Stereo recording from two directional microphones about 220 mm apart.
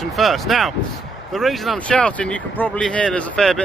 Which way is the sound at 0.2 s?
Centre (ahead or behind).